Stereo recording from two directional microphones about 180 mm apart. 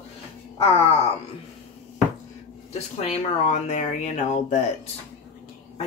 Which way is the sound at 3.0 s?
35° left (ahead or behind).